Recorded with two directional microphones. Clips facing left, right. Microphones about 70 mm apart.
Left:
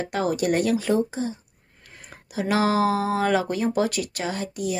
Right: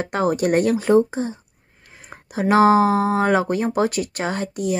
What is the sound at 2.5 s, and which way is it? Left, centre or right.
A woman's voice, right.